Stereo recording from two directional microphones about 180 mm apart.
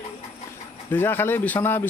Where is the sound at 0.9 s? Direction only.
10° left (ahead or behind).